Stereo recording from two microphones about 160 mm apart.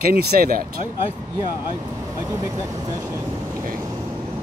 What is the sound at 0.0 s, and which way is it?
Speech, 70° right (ahead or behind).